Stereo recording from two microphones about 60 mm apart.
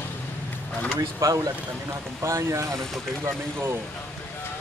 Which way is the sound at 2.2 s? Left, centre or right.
Right.